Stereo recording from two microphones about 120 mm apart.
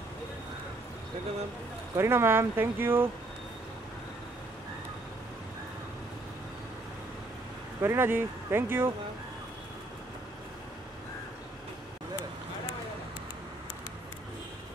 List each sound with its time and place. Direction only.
2.0 s speech: 20° right (ahead or behind)
7.8 s speech: 20° right (ahead or behind)